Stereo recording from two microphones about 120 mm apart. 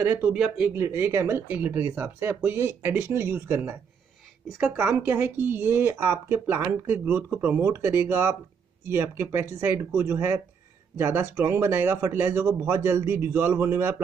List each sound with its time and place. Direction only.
0.0 s speech: 15° right (ahead or behind)
0.8 s speech: 20° right (ahead or behind)